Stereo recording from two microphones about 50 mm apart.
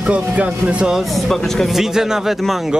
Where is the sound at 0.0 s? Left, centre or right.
Right.